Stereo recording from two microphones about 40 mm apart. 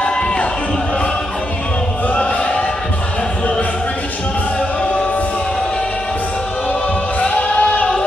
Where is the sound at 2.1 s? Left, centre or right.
Left.